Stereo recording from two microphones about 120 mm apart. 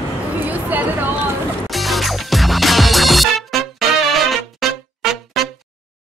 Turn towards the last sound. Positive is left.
turn(degrees=0)  # may be behind; listen again after turning